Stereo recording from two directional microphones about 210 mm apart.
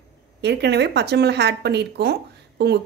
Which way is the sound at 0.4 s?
55° right (ahead or behind).